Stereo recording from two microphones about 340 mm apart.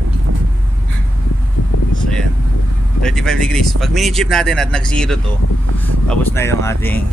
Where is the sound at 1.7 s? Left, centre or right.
Left.